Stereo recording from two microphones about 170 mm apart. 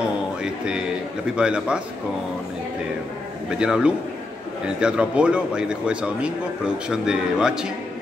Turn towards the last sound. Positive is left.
turn(degrees=-5)  # may be behind; listen again after turning